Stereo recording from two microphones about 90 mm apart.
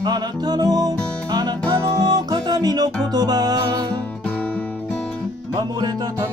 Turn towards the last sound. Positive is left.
turn(degrees=-50)  # may be behind; listen again after turning